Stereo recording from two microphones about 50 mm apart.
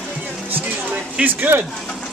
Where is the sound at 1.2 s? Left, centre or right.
Right.